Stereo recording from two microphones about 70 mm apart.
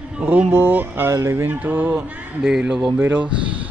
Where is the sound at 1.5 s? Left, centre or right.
Right.